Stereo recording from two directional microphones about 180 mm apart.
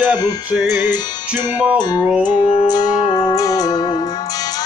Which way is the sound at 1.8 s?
25° left (ahead or behind).